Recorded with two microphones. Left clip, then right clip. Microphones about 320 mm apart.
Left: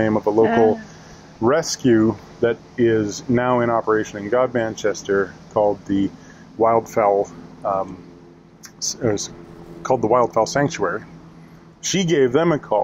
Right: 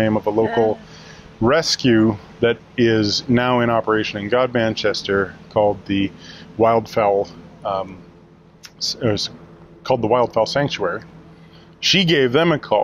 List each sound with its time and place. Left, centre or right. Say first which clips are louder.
0.0 s speech: even; right
1.4 s speech: right 2 dB; right
10.4 s speech: even; centre